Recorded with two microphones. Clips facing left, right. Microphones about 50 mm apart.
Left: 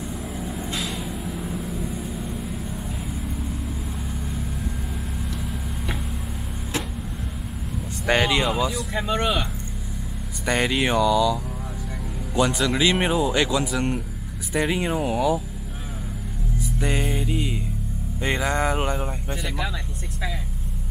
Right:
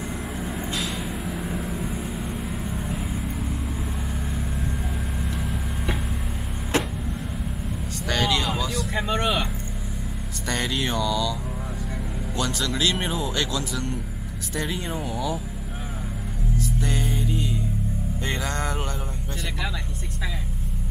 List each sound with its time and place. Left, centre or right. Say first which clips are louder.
0.4 s vehicle: even; centre
5.2 s vehicle: right 1 dB; centre
8.1 s a sound: left 4 dB; left
8.5 s speech: left 3 dB; centre
8.9 s speech: right 1 dB; centre
10.4 s speech: left 5 dB; centre
12.4 s speech: left 6 dB; centre
16.5 s music: left 1 dB; centre
18.2 s speech: left 6 dB; centre